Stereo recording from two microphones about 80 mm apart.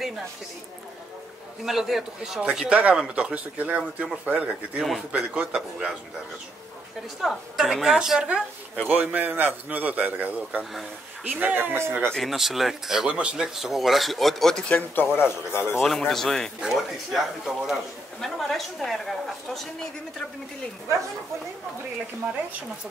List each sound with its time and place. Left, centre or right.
1.6 s speech: centre
7.2 s speech: centre
8.8 s a man's voice: right
10.6 s speech: centre
11.2 s a man's voice: centre
12.1 s speech: centre
15.1 s speech: left
15.8 s speech: centre